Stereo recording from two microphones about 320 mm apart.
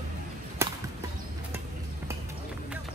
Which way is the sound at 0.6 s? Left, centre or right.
Centre.